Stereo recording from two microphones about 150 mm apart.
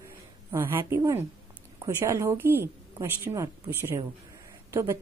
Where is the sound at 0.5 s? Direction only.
15° right (ahead or behind).